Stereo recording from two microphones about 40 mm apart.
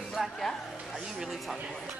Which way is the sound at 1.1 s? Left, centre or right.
Centre.